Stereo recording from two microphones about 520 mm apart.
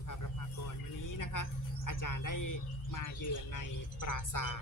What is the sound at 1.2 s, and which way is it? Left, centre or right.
Speech, left.